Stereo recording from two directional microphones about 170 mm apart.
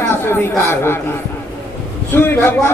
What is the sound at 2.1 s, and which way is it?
Speech, 15° left (ahead or behind).